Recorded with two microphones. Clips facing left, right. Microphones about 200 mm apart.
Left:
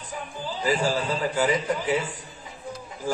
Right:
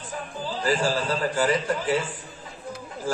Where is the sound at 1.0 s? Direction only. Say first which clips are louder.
Even; 10° left (ahead or behind).